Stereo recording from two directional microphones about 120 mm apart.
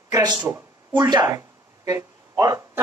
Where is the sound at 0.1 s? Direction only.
35° right (ahead or behind).